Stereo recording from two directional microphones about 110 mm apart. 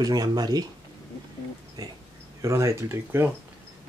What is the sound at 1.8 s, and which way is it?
Speech, 35° right (ahead or behind).